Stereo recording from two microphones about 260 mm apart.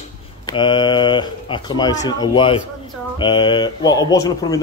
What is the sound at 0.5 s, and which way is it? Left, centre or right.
Speech, centre.